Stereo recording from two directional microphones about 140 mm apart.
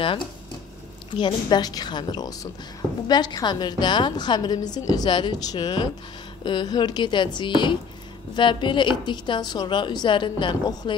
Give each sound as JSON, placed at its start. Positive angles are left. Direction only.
{"t": 1.1, "sound": "a woman's voice", "side_deg": 35}